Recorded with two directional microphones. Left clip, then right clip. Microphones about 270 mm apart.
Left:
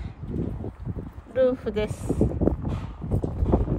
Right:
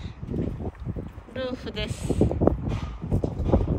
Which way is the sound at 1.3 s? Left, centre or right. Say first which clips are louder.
Left 9 dB; left.